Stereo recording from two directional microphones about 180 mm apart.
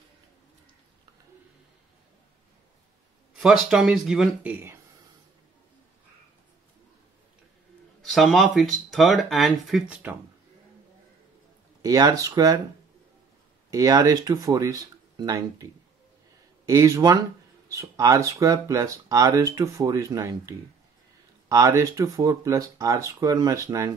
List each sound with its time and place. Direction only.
3.3 s speech: 5° right (ahead or behind)
8.0 s speech: centre (ahead or behind)
11.8 s speech: 20° right (ahead or behind)
13.7 s speech: 20° right (ahead or behind)